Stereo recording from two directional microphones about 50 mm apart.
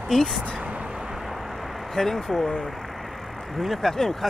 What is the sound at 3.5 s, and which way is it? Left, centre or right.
Speech, centre.